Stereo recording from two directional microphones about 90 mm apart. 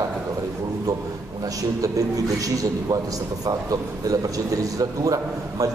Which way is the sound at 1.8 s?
40° right (ahead or behind).